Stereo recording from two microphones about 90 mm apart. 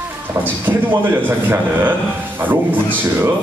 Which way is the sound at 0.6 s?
20° right (ahead or behind).